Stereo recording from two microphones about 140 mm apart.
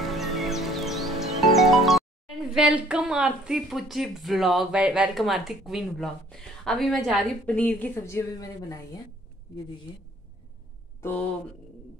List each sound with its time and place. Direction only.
0.0 s music: centre (ahead or behind); by 9.0 s 25° left (ahead or behind)
11.0 s speech: 15° left (ahead or behind)